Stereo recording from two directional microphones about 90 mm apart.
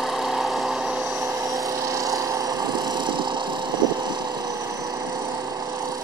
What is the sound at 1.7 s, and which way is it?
Vehicle, 40° right (ahead or behind).